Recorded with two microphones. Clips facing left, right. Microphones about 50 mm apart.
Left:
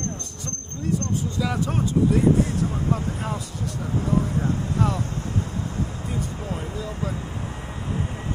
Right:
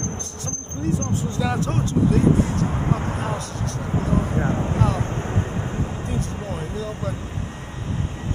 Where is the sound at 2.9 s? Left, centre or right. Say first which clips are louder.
Right 2 dB; right.